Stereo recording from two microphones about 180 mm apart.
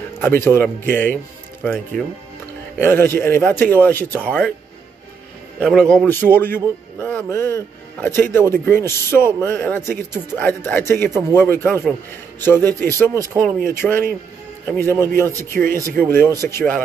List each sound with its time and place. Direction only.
0.2 s a man's voice: 10° left (ahead or behind)
5.6 s a man's voice: centre (ahead or behind)
13.1 s speech: 20° right (ahead or behind)
13.7 s a man's voice: 10° left (ahead or behind)